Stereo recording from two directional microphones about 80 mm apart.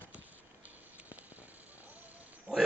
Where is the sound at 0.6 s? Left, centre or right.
Centre.